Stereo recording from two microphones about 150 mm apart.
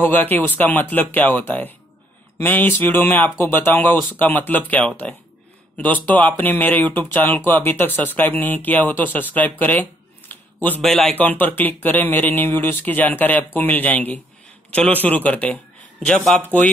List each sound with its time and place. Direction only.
0.1 s speech: 10° left (ahead or behind)
11.2 s speech: 10° left (ahead or behind)